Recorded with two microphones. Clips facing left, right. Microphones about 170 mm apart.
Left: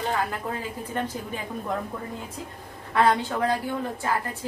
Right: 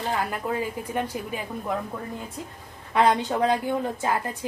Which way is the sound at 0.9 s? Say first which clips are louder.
Even; 10° right (ahead or behind).